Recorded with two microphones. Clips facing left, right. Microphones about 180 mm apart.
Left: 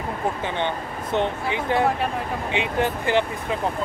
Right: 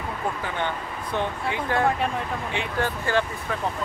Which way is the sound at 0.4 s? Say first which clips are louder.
Left 3 dB; 20° left (ahead or behind).